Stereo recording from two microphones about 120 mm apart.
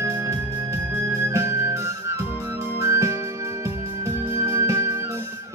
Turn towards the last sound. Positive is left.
turn(degrees=-25)  # may be behind; listen again after turning